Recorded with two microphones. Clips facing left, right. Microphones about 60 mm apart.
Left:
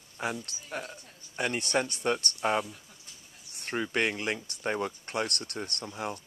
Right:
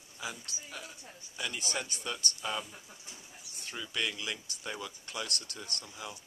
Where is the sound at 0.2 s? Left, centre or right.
Left.